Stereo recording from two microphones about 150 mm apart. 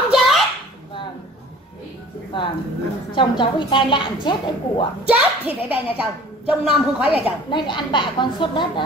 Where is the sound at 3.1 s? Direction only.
35° left (ahead or behind).